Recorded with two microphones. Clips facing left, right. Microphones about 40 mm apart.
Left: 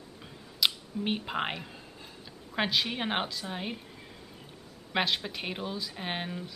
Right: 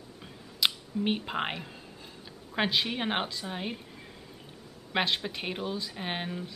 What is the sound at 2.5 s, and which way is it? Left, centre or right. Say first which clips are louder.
Speech: right 1 dB; centre.